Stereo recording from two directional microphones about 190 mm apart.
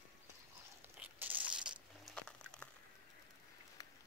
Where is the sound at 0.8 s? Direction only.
10° right (ahead or behind).